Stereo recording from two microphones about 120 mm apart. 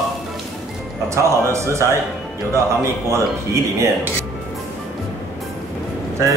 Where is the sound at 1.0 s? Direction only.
25° right (ahead or behind).